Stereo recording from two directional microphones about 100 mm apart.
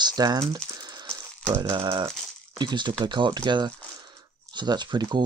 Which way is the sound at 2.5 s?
50° right (ahead or behind).